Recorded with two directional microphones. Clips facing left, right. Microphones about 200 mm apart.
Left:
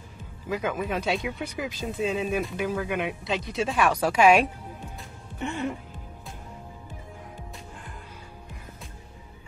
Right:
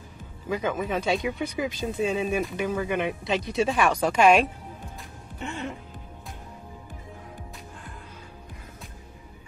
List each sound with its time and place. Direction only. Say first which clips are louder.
0.5 s speech: right 1 dB; 5° left (ahead or behind)